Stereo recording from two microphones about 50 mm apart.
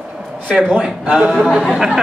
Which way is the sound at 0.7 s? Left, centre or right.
Centre.